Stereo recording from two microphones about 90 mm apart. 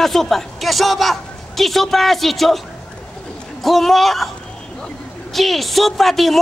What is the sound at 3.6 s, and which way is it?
Speech, centre (ahead or behind).